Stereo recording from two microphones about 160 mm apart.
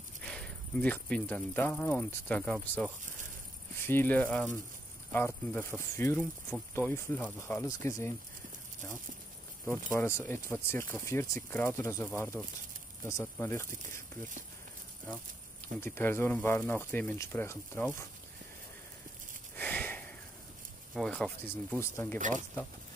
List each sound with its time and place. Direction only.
0.2 s speech: 5° left (ahead or behind)
9.9 s speech: 15° left (ahead or behind)
15.8 s speech: 15° left (ahead or behind)
19.5 s sniff: 10° left (ahead or behind)
20.9 s speech: 5° left (ahead or behind)
21.9 s speech: 15° left (ahead or behind)